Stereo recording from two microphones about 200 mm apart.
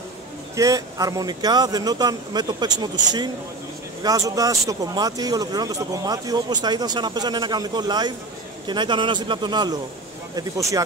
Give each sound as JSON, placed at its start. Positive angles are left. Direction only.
{"t": 0.6, "sound": "speech", "side_deg": -15}
{"t": 4.0, "sound": "speech", "side_deg": -15}